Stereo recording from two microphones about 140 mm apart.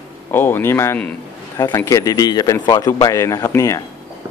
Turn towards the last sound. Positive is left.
turn(degrees=20)  # may be behind; listen again after turning